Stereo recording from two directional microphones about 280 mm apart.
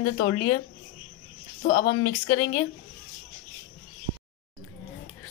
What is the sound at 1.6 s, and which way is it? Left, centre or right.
Speech, left.